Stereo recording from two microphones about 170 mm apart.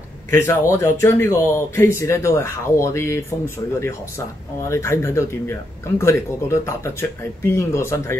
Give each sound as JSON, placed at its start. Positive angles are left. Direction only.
{"t": 0.3, "sound": "speech", "side_deg": 15}